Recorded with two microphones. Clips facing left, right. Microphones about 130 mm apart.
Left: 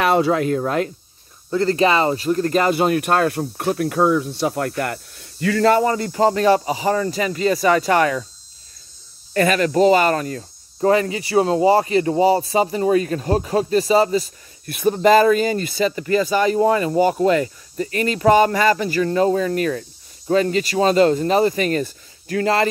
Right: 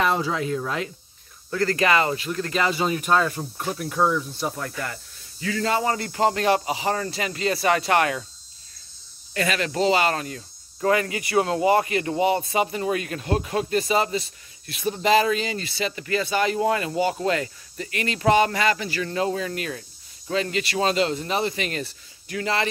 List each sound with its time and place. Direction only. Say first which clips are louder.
0.0 s speech: left 6 dB; 65° left (ahead or behind); by 0.9 s 50° left (ahead or behind)
1.5 s speech: left 4 dB; 25° left (ahead or behind); by 5.9 s 60° left (ahead or behind)
5.9 s cricket: left 5 dB; 35° left (ahead or behind)
9.3 s cricket: left 8 dB; 45° left (ahead or behind)